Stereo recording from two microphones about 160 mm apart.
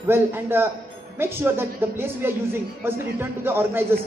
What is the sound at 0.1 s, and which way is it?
A man's voice, 15° right (ahead or behind).